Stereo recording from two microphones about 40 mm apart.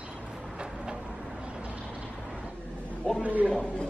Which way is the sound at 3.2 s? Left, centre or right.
Right.